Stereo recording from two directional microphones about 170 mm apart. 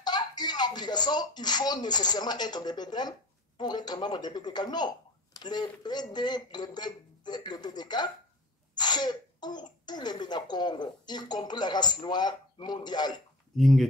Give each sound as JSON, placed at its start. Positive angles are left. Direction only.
{"t": 0.0, "sound": "speech", "side_deg": 25}
{"t": 13.6, "sound": "speech", "side_deg": 0}